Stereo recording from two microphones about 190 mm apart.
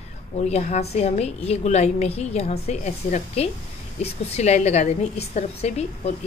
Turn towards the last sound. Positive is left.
turn(degrees=35)  # may be behind; listen again after turning